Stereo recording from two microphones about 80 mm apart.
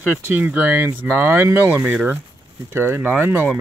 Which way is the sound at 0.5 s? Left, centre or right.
Centre.